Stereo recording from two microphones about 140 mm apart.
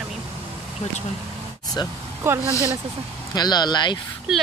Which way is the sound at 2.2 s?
20° right (ahead or behind).